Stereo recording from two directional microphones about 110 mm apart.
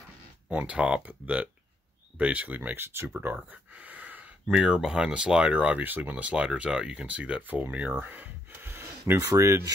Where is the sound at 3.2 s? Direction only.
15° right (ahead or behind).